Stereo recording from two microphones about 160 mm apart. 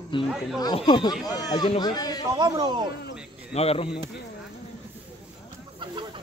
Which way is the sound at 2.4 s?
25° right (ahead or behind).